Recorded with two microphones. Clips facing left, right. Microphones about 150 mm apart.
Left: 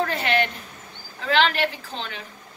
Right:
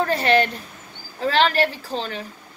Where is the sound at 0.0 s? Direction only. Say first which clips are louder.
Right 4 dB; 35° right (ahead or behind).